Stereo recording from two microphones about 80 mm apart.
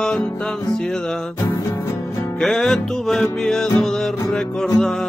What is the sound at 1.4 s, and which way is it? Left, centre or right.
Music, left.